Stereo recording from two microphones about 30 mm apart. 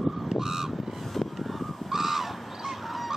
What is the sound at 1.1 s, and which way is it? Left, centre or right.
Goose, centre.